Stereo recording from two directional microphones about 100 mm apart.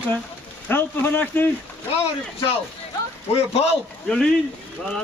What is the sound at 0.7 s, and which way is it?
Speech, 20° left (ahead or behind).